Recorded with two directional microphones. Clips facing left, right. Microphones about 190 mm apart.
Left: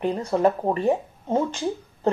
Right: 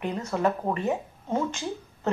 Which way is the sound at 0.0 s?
30° left (ahead or behind).